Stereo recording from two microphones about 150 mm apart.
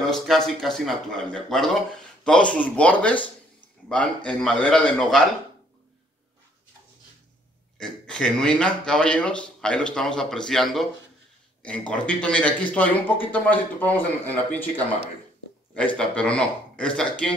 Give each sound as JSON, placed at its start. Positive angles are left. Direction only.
{"t": 0.0, "sound": "a man's voice", "side_deg": 5}
{"t": 7.7, "sound": "a man's voice", "side_deg": 5}
{"t": 16.0, "sound": "a man's voice", "side_deg": 5}